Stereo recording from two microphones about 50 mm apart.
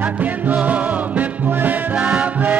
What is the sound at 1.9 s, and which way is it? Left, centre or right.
Music, right.